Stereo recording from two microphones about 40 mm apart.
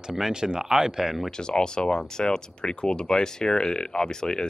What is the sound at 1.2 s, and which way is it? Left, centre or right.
Speech, centre.